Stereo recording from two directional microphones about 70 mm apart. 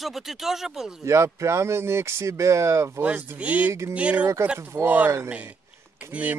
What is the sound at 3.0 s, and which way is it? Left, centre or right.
Speech, centre.